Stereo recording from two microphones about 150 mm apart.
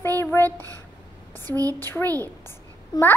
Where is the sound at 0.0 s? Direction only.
15° left (ahead or behind).